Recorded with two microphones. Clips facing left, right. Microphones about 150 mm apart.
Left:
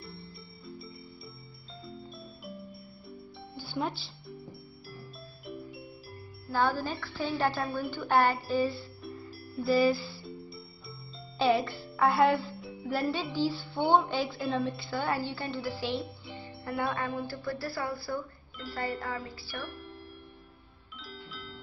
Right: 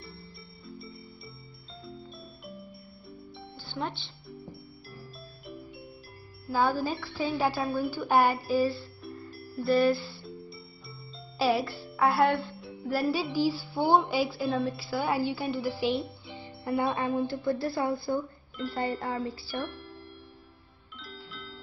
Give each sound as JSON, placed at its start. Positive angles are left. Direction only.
{"t": 0.7, "sound": "music", "side_deg": 0}
{"t": 3.5, "sound": "music", "side_deg": 5}
{"t": 6.8, "sound": "speech", "side_deg": -5}
{"t": 8.1, "sound": "a woman's voice", "side_deg": -10}
{"t": 8.4, "sound": "music", "side_deg": 0}
{"t": 13.7, "sound": "a woman's voice", "side_deg": 0}
{"t": 16.3, "sound": "music", "side_deg": -15}
{"t": 16.9, "sound": "speech", "side_deg": -20}
{"t": 19.6, "sound": "music", "side_deg": 0}
{"t": 21.0, "sound": "music", "side_deg": 0}